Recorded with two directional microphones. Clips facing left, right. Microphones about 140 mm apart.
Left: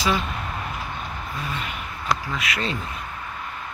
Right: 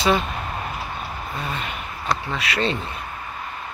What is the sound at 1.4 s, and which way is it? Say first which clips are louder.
Speech: right 2 dB; 30° right (ahead or behind).